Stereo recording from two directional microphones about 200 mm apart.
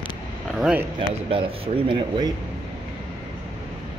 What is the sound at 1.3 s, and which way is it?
Speech, 25° right (ahead or behind).